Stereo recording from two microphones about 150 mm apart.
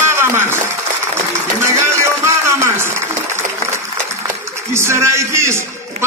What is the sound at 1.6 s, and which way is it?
A man's voice, 15° right (ahead or behind).